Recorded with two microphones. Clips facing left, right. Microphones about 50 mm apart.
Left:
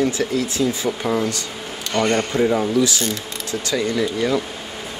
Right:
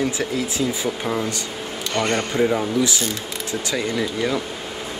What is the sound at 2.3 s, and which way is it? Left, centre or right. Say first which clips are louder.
Speech: even; centre.